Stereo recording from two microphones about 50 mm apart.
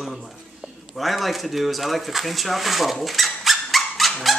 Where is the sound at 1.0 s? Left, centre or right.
Centre.